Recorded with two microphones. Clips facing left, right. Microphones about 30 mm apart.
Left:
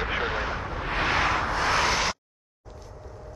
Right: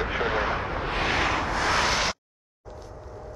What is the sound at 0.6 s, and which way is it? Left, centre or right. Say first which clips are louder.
Vehicle: right 3 dB; right.